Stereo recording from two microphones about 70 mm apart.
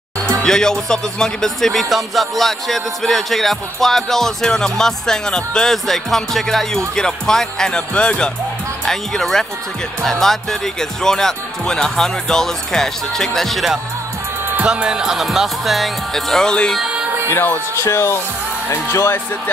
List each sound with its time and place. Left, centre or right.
0.4 s speech: centre
14.6 s speech: centre
17.3 s speech: left